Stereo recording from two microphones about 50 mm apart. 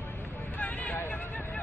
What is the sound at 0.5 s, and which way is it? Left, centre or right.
Vehicle, left.